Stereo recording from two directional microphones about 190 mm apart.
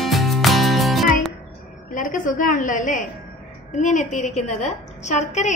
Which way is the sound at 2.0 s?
45° left (ahead or behind).